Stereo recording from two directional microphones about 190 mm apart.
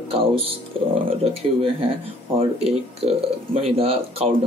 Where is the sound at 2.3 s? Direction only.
30° right (ahead or behind).